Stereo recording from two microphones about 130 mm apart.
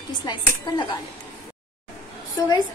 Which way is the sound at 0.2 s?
30° left (ahead or behind).